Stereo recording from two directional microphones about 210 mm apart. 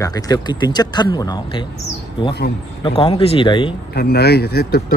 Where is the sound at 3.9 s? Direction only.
50° left (ahead or behind).